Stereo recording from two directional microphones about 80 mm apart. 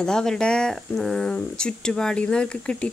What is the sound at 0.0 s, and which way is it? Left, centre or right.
Speech, centre.